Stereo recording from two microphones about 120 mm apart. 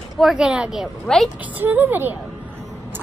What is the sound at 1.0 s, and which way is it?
Speech, 5° left (ahead or behind).